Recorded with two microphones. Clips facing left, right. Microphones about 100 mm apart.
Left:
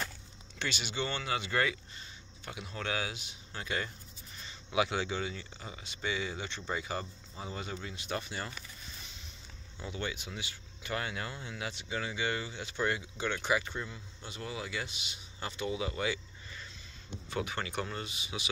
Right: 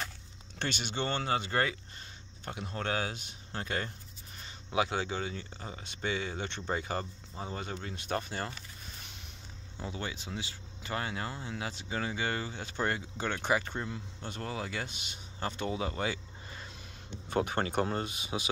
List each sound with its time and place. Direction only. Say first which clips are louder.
0.6 s speech: right 1 dB; 50° right (ahead or behind)
9.8 s speech: even; 35° right (ahead or behind)
13.8 s a man's voice: right 6 dB; 55° right (ahead or behind)